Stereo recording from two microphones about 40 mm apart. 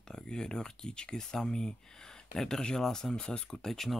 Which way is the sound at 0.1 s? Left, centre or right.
Centre.